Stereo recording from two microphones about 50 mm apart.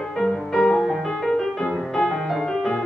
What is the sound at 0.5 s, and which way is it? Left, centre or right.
Music, centre.